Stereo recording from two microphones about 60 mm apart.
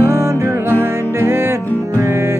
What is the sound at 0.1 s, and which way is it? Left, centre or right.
Music, right.